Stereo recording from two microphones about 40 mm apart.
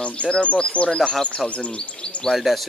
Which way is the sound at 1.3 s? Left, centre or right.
Left.